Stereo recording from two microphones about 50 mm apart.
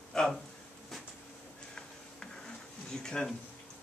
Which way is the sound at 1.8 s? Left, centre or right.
Centre.